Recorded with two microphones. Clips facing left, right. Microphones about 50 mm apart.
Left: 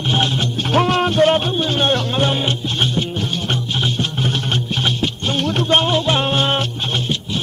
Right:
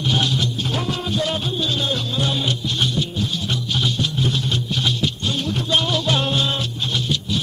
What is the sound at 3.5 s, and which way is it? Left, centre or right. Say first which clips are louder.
Music: left 2 dB; left.